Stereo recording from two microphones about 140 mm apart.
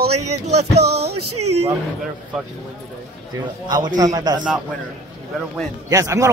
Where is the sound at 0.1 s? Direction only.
50° right (ahead or behind).